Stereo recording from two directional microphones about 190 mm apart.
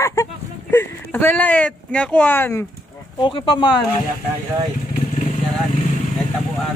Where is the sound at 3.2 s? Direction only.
25° left (ahead or behind).